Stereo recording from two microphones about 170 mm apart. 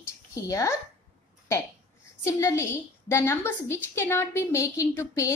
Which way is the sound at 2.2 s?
15° left (ahead or behind).